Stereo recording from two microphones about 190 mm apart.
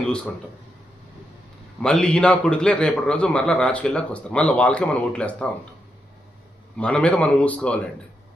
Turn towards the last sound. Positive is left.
turn(degrees=5)  # may be behind; listen again after turning